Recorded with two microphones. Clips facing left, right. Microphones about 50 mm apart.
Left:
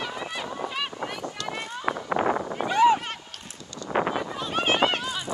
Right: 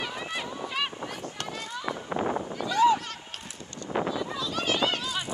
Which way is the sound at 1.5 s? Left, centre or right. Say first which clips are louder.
Left 3 dB; left.